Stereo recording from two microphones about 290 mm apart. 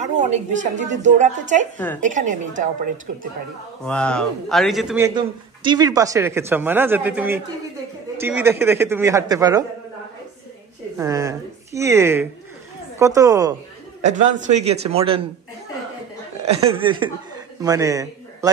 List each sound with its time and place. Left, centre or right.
0.0 s a woman's voice: right
3.8 s a man's voice: centre
11.0 s a man's voice: centre
14.0 s a woman's voice: right
16.4 s a man's voice: centre